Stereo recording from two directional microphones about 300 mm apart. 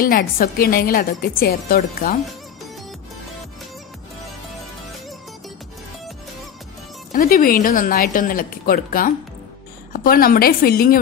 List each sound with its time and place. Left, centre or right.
0.0 s speech: left
7.1 s speech: left